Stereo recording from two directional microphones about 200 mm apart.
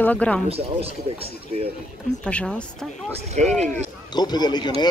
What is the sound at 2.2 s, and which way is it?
Speech, 5° left (ahead or behind).